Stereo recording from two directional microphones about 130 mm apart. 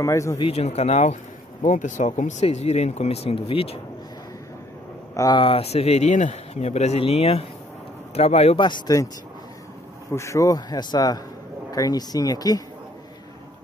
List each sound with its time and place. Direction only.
0.0 s a man's voice: 20° left (ahead or behind)
0.4 s speech: 50° left (ahead or behind)
1.6 s speech: 75° left (ahead or behind)
2.4 s speech: 55° left (ahead or behind)
5.1 s speech: 25° left (ahead or behind)
5.4 s speech: 45° left (ahead or behind)
8.5 s speech: 35° left (ahead or behind)
10.1 s a man's voice: 25° left (ahead or behind)